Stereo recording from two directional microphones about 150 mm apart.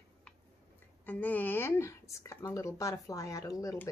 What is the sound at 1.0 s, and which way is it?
Speech, 10° left (ahead or behind).